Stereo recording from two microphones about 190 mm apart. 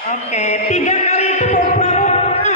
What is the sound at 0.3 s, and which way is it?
Music, 35° left (ahead or behind).